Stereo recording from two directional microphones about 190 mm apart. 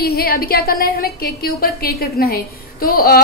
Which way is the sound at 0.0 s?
55° left (ahead or behind).